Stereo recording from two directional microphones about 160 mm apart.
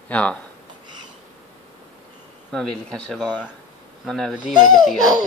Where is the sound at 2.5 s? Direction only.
Centre (ahead or behind).